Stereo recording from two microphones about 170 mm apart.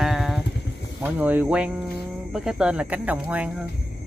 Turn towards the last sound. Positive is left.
turn(degrees=-10)  # may be behind; listen again after turning